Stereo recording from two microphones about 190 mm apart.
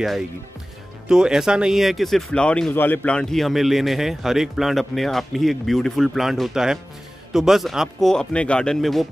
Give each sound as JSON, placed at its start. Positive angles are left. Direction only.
{"t": 1.0, "sound": "speech", "side_deg": -5}